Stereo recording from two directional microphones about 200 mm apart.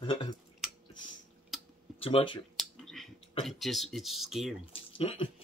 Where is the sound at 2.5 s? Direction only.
Centre (ahead or behind).